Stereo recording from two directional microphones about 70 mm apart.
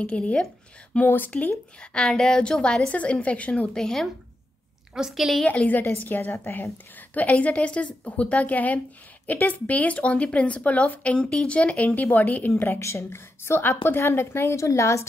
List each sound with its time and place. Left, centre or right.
0.0 s a woman's voice: centre
0.9 s a woman's voice: left
1.8 s a woman's voice: centre
3.7 s a woman's voice: centre
4.9 s a woman's voice: centre
5.5 s a woman's voice: left